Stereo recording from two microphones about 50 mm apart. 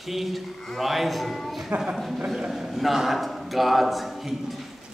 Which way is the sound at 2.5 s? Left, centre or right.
Centre.